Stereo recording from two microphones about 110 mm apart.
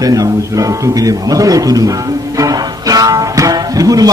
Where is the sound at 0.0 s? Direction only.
35° right (ahead or behind).